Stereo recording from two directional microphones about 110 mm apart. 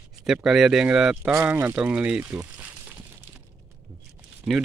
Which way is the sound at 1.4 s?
15° right (ahead or behind).